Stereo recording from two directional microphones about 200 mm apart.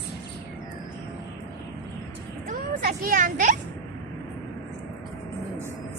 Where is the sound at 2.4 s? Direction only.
45° right (ahead or behind).